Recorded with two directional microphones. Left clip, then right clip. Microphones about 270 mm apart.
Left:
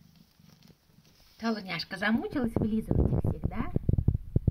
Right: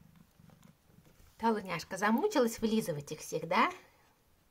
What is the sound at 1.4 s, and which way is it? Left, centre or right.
A woman's voice, centre.